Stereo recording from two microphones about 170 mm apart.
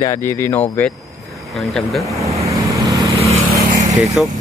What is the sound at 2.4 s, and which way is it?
Vehicle, 20° right (ahead or behind).